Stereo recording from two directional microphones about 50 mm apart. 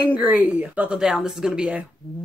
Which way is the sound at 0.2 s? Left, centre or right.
Right.